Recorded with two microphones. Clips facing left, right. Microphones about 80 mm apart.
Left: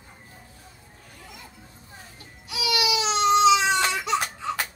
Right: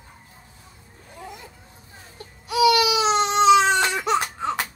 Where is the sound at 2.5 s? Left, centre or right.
Right.